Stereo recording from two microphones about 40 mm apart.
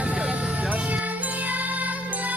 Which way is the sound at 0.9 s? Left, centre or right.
Right.